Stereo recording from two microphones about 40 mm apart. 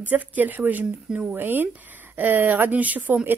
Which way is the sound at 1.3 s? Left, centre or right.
Right.